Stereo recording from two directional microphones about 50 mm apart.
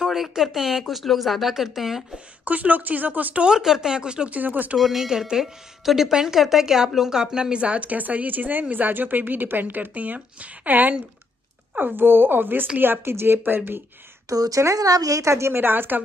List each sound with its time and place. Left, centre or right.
0.0 s speech: centre
2.1 s speech: right
3.4 s a woman's voice: centre
4.3 s speech: right
4.7 s a woman's voice: centre; by 13.6 s right
14.3 s speech: right
15.2 s speech: right
15.5 s speech: right